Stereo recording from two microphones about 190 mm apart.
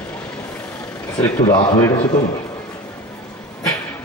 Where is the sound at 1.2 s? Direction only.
20° left (ahead or behind).